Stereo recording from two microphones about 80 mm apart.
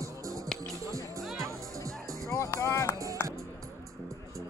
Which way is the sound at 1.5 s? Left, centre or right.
Right.